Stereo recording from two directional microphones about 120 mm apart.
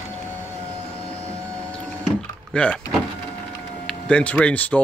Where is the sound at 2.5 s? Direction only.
10° left (ahead or behind).